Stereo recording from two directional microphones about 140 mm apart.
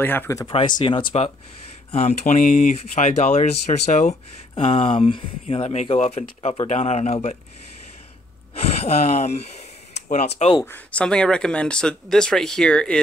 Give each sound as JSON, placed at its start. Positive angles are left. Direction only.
{"t": 0.0, "sound": "speech", "side_deg": 15}
{"t": 0.5, "sound": "speech", "side_deg": 35}
{"t": 1.9, "sound": "speech", "side_deg": 50}
{"t": 2.8, "sound": "speech", "side_deg": 50}
{"t": 4.6, "sound": "speech", "side_deg": 40}
{"t": 8.5, "sound": "speech", "side_deg": 50}
{"t": 10.6, "sound": "speech", "side_deg": 10}